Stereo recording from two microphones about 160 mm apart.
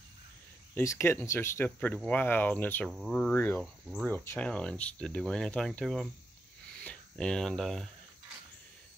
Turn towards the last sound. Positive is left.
turn(degrees=0)  # may be behind; listen again after turning